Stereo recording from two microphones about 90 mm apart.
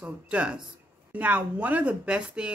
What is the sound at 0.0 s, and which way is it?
Speech, 10° right (ahead or behind).